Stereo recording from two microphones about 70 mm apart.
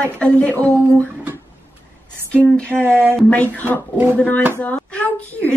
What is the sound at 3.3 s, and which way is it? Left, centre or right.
A woman's voice, left.